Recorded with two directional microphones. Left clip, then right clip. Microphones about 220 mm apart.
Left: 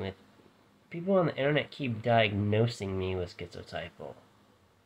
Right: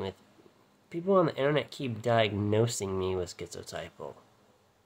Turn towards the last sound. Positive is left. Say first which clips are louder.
# even
turn(degrees=-20)  # may be behind; listen again after turning